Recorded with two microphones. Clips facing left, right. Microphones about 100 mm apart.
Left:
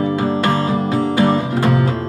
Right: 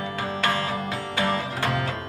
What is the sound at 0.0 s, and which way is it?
Music, 30° left (ahead or behind).